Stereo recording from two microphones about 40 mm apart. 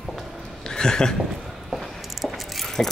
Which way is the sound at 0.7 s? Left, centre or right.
Centre.